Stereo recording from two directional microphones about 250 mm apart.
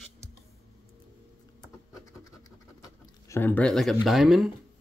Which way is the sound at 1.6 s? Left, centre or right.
Centre.